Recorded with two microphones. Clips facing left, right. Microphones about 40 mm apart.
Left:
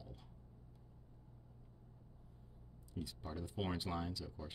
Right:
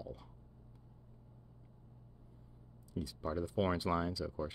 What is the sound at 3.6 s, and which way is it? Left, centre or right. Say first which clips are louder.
Speech: right 6 dB; right.